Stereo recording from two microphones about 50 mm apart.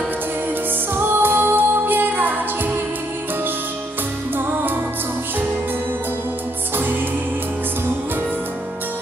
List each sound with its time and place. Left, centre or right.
0.9 s music: right
4.4 s music: right